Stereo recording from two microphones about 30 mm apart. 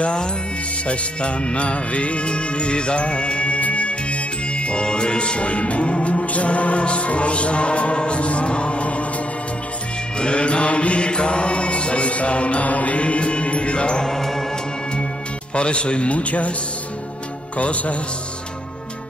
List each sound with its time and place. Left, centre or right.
0.0 s mantra: left
0.8 s music: left
4.8 s mantra: left
6.2 s music: left
10.1 s mantra: left
14.0 s music: centre
15.5 s mantra: left
17.6 s music: left